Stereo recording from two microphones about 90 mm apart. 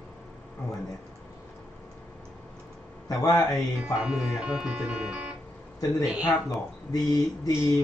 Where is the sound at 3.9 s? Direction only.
10° right (ahead or behind).